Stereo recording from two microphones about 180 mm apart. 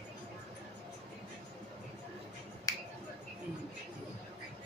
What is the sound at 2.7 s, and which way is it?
Finger snapping, 20° left (ahead or behind).